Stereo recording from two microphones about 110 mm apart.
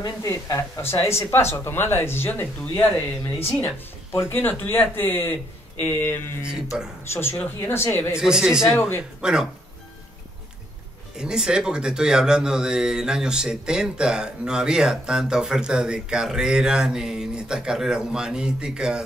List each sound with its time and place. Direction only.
0.0 s speech: 30° left (ahead or behind)
6.7 s speech: 5° right (ahead or behind)
7.1 s speech: 20° left (ahead or behind)
8.2 s speech: 5° right (ahead or behind)
8.6 s speech: 20° left (ahead or behind)
9.2 s speech: 5° right (ahead or behind)
11.1 s speech: 5° right (ahead or behind)